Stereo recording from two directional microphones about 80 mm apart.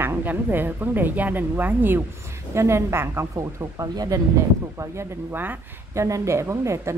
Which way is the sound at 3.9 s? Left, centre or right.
Right.